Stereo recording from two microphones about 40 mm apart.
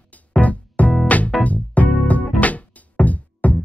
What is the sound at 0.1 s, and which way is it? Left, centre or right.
Music, left.